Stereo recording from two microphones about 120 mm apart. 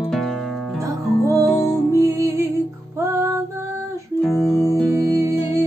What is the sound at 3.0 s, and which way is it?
Female singing, 25° right (ahead or behind).